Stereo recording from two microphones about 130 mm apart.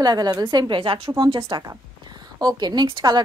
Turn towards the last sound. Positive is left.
turn(degrees=-35)  # may be behind; listen again after turning